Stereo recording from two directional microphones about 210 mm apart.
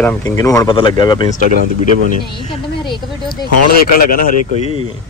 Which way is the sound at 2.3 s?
20° left (ahead or behind).